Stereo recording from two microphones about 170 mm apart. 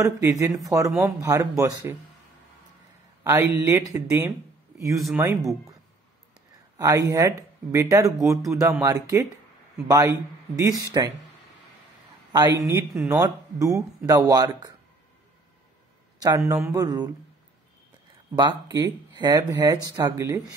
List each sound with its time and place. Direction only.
0.0 s speech: 15° right (ahead or behind)
3.3 s speech: 15° right (ahead or behind)
4.9 s speech: centre (ahead or behind)
5.2 s speech: 20° right (ahead or behind)
6.8 s speech: 20° right (ahead or behind)
12.3 s speech: 20° right (ahead or behind)
16.2 s speech: 20° right (ahead or behind)
18.3 s speech: 25° right (ahead or behind)